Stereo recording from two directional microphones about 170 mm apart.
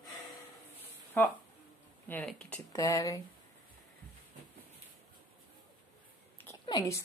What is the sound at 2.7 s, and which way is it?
Speech, 20° left (ahead or behind).